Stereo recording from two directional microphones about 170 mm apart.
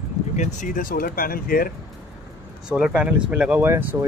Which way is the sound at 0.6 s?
50° left (ahead or behind).